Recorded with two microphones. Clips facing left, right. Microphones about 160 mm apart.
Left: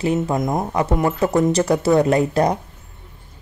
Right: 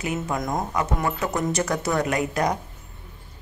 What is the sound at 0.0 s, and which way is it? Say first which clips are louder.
Speech: left 7 dB; 30° left (ahead or behind).